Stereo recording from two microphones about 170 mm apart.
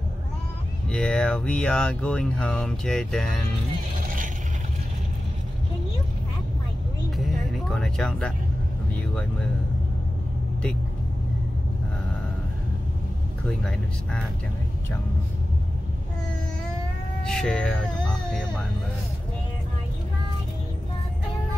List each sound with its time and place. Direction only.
0.8 s speech: 5° left (ahead or behind)
4.0 s vehicle: 50° right (ahead or behind)
7.2 s music: centre (ahead or behind)
13.5 s speech: 5° left (ahead or behind)
17.2 s cat: 5° left (ahead or behind)